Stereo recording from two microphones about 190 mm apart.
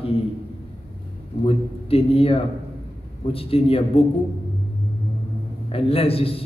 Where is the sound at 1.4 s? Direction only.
30° left (ahead or behind).